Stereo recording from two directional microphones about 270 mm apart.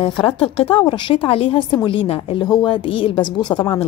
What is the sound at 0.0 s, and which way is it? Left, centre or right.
A woman's voice, centre.